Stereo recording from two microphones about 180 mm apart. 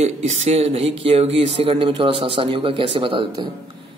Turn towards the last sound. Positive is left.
turn(degrees=-25)  # may be behind; listen again after turning